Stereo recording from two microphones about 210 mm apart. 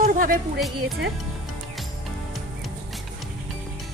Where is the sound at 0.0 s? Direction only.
40° right (ahead or behind).